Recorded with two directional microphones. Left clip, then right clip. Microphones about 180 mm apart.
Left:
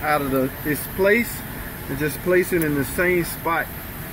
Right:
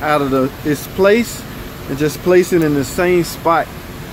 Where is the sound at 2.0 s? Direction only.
20° right (ahead or behind).